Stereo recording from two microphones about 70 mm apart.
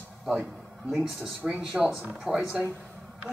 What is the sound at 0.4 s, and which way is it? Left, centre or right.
Speech, centre.